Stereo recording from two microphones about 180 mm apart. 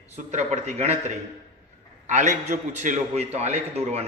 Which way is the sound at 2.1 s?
40° right (ahead or behind).